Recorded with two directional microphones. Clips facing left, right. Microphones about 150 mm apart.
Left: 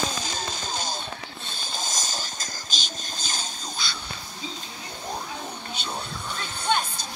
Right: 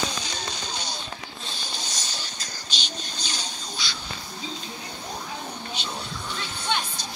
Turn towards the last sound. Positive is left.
turn(degrees=45)  # may be behind; listen again after turning